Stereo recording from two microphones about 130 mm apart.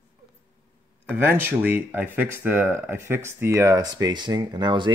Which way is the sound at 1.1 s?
15° right (ahead or behind).